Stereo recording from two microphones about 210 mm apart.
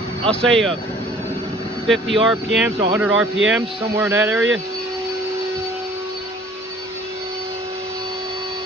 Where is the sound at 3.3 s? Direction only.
65° right (ahead or behind).